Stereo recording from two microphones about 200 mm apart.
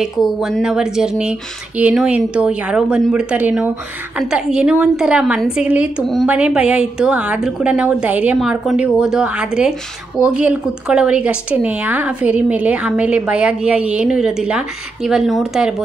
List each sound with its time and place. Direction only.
0.0 s a woman's voice: centre (ahead or behind)